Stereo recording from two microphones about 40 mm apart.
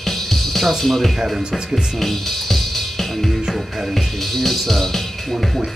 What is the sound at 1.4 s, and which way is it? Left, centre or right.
Speech, centre.